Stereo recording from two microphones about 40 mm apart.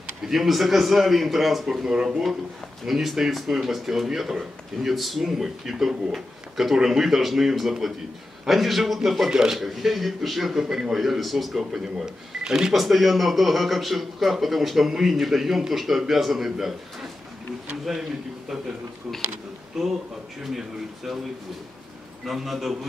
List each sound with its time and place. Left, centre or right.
0.3 s a man's voice: centre
1.7 s a man's voice: centre
9.3 s speech: centre
9.6 s a man's voice: centre
12.7 s a man's voice: centre
19.7 s a man's voice: centre
22.2 s a man's voice: centre